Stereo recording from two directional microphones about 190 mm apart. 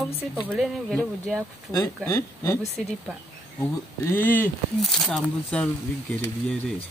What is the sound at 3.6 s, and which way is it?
Speech, 10° left (ahead or behind).